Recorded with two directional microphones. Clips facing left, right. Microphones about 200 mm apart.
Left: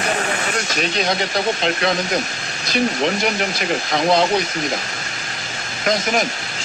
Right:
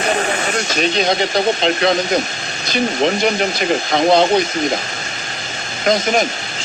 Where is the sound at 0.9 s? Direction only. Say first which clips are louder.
Right 4 dB; 25° right (ahead or behind).